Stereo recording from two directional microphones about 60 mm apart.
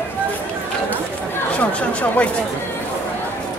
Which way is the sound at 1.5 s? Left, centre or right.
Left.